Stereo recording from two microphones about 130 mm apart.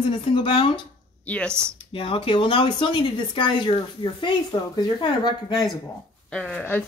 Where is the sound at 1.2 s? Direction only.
5° left (ahead or behind).